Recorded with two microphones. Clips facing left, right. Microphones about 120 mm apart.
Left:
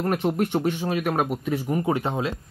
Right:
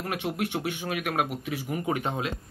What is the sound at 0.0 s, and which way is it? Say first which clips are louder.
Speech: left 7 dB; 40° left (ahead or behind).